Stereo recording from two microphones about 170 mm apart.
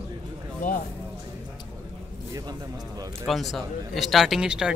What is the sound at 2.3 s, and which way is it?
Speech, 25° right (ahead or behind).